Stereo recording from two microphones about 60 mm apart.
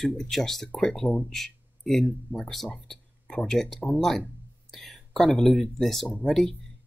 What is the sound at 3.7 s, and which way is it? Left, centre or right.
Speech, centre.